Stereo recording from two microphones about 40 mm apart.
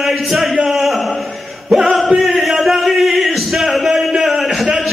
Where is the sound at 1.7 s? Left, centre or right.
Centre.